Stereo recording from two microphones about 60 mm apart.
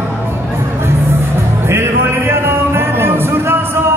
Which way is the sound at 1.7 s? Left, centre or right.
Right.